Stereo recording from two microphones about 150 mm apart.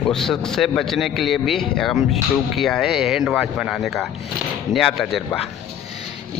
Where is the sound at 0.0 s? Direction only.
5° left (ahead or behind).